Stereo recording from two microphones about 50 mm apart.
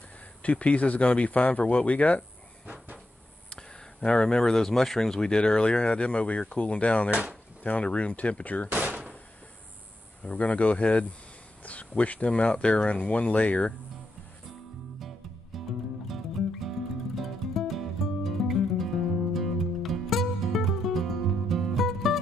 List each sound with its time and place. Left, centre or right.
0.4 s speech: left
3.5 s speech: left
8.6 s door: right
10.2 s speech: left
15.0 s music: centre
16.6 s music: centre